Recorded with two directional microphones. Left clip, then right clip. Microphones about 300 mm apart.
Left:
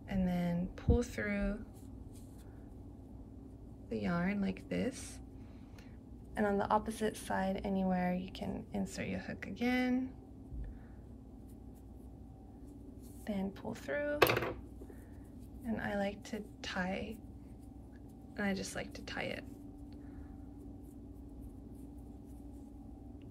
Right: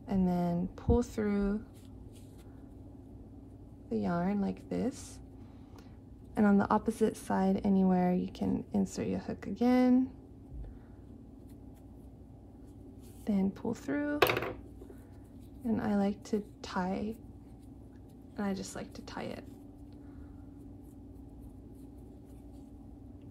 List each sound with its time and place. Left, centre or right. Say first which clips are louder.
0.0 s a sound: right 5 dB; centre
3.9 s speech: right 4 dB; centre
6.6 s speech: right 3 dB; centre
13.2 s speech: right 6 dB; centre
15.7 s speech: right 4 dB; centre
18.3 s speech: even; centre